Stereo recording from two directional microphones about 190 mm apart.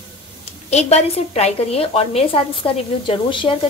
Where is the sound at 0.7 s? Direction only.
35° left (ahead or behind).